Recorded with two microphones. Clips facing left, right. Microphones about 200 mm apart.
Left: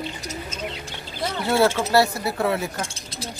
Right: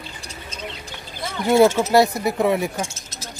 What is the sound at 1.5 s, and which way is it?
Speech, 15° right (ahead or behind).